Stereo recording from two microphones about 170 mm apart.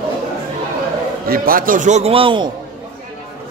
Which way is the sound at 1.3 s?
55° right (ahead or behind).